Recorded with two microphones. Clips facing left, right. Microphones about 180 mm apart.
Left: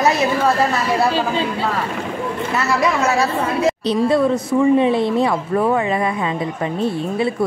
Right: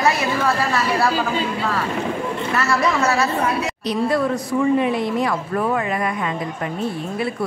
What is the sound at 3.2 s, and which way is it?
A woman's voice, 30° left (ahead or behind).